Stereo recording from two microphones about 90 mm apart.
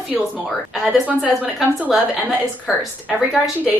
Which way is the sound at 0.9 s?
15° right (ahead or behind).